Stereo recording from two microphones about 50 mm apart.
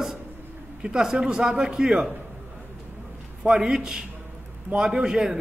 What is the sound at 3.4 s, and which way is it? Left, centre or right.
A man's voice, centre.